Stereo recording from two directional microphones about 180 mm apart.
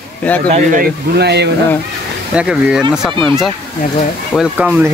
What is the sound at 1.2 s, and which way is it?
Speech, 70° right (ahead or behind).